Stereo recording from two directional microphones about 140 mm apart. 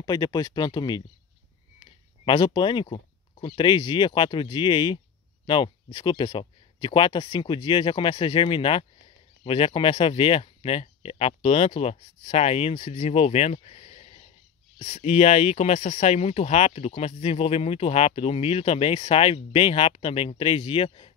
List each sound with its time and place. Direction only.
0.0 s speech: 30° left (ahead or behind)